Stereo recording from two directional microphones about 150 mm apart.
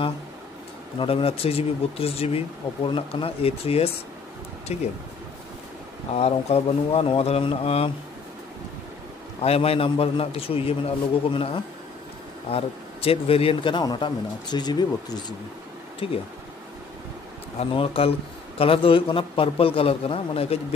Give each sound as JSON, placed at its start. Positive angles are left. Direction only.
{"t": 0.9, "sound": "speech", "side_deg": 40}
{"t": 6.1, "sound": "speech", "side_deg": 45}
{"t": 9.4, "sound": "speech", "side_deg": 40}
{"t": 12.4, "sound": "speech", "side_deg": 40}
{"t": 16.0, "sound": "speech", "side_deg": 35}
{"t": 17.6, "sound": "speech", "side_deg": 40}